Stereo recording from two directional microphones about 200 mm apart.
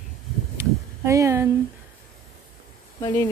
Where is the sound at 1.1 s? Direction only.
15° right (ahead or behind).